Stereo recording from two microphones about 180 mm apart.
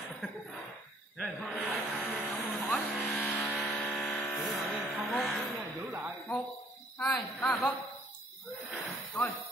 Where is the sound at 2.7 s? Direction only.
5° left (ahead or behind).